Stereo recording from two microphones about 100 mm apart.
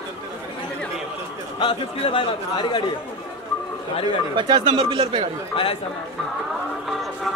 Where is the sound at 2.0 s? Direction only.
55° left (ahead or behind).